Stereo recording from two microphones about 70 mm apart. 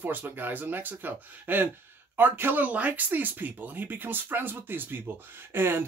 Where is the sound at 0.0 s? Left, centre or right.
Right.